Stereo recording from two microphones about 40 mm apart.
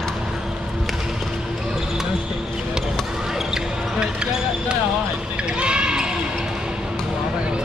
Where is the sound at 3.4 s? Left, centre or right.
Centre.